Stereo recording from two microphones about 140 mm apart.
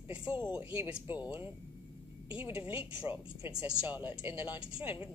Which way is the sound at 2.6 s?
10° right (ahead or behind).